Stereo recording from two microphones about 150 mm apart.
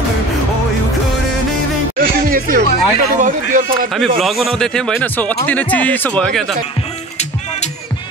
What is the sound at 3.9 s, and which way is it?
Speech, centre (ahead or behind).